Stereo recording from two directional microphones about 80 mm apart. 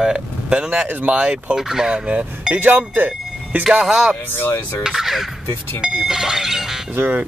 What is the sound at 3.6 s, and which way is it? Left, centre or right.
Speech, centre.